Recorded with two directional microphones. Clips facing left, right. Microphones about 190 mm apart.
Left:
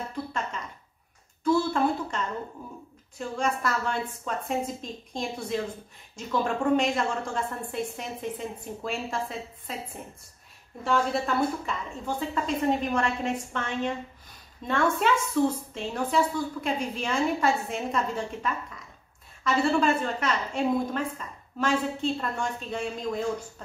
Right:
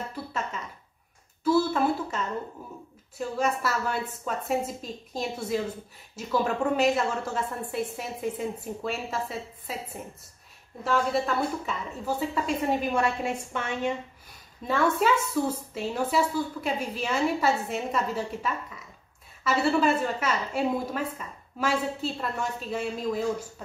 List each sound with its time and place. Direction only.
0.1 s a sound: 5° right (ahead or behind)
3.2 s a woman's voice: 5° right (ahead or behind)
10.8 s a woman's voice: centre (ahead or behind)